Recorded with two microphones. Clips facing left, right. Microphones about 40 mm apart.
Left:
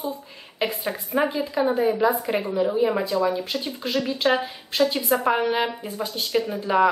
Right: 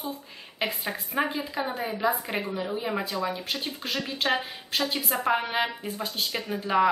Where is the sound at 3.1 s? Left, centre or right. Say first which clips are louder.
Left 7 dB; centre.